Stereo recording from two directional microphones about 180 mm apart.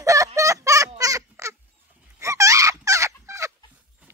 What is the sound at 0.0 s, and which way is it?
Fowl, 20° right (ahead or behind).